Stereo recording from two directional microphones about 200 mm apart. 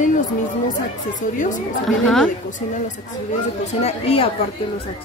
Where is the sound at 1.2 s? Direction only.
40° left (ahead or behind).